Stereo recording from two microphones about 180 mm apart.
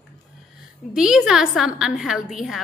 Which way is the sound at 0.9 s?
5° right (ahead or behind).